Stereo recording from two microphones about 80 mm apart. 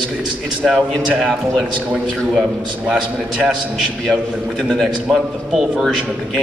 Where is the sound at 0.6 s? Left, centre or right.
Centre.